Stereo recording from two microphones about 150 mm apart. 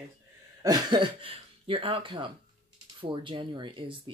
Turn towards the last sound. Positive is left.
turn(degrees=-35)  # may be behind; listen again after turning